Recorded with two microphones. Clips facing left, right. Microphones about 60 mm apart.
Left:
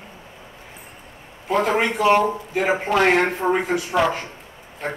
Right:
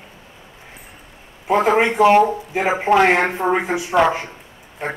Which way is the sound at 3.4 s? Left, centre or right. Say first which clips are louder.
Right 1 dB; right.